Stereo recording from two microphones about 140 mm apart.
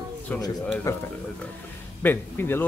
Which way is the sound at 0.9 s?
20° left (ahead or behind).